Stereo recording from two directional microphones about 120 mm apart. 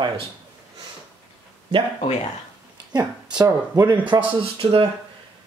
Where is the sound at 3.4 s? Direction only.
35° right (ahead or behind).